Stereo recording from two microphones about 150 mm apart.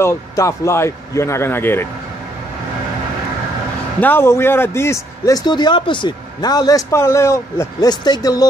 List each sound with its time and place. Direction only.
0.0 s a man's voice: 20° left (ahead or behind)
4.0 s a man's voice: 15° left (ahead or behind)